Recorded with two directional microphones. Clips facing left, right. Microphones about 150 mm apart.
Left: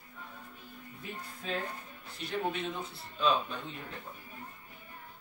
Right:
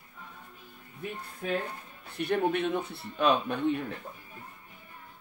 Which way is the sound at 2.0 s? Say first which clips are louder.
Right 7 dB; 60° right (ahead or behind).